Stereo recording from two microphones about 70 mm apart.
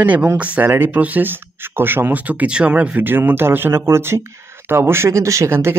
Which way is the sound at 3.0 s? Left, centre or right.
Right.